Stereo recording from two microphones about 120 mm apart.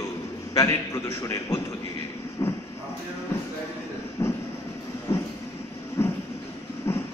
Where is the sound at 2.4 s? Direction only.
30° left (ahead or behind).